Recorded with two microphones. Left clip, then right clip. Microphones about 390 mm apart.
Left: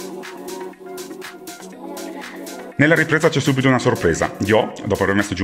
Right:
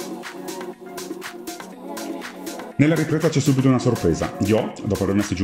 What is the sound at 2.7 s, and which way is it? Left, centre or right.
Speech, left.